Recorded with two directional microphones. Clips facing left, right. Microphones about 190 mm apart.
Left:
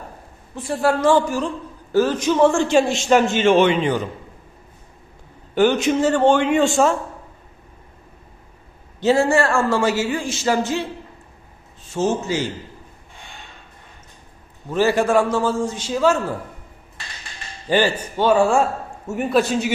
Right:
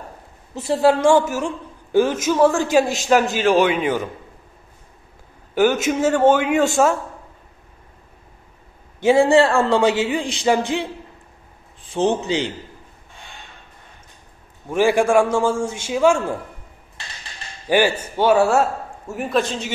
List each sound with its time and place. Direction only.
0.6 s a man's voice: 20° right (ahead or behind); by 3.9 s 5° right (ahead or behind)
5.5 s a man's voice: 5° right (ahead or behind)
9.0 s a man's voice: 15° right (ahead or behind)
11.9 s a man's voice: 15° right (ahead or behind)
14.7 s a man's voice: 10° right (ahead or behind)
17.6 s a man's voice: 10° right (ahead or behind); by 19.7 s 10° left (ahead or behind)